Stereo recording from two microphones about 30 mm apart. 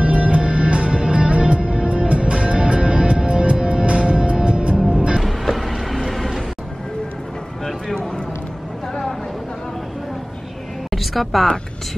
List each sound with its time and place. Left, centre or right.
0.0 s music: right
4.7 s music: right
5.4 s train: centre
10.9 s music: centre